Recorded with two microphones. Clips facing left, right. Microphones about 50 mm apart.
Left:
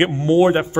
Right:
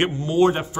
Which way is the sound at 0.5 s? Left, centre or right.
Left.